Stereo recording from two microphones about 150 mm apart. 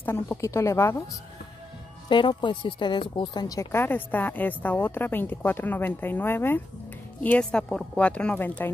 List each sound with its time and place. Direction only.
0.0 s a woman's voice: 15° left (ahead or behind)
2.0 s a woman's voice: 35° left (ahead or behind); by 8.6 s 10° left (ahead or behind)